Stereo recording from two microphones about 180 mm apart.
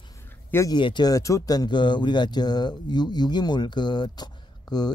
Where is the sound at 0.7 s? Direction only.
25° left (ahead or behind).